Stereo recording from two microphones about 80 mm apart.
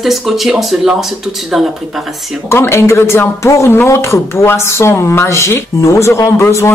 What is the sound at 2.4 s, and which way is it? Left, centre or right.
Speech, left.